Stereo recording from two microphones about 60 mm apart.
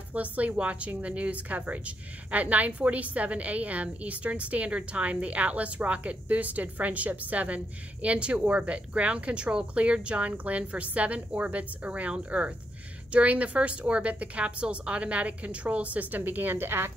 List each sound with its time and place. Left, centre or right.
0.1 s a woman's voice: right